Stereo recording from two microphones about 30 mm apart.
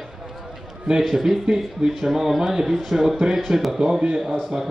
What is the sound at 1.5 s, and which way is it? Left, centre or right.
Speech, right.